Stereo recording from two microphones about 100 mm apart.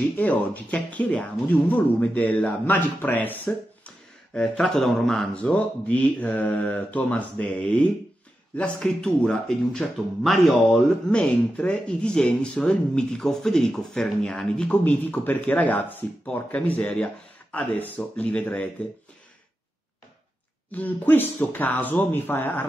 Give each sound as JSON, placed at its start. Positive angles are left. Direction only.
{"t": 0.2, "sound": "speech", "side_deg": 15}
{"t": 20.7, "sound": "speech", "side_deg": 15}